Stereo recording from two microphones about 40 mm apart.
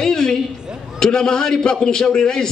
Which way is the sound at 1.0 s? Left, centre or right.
Centre.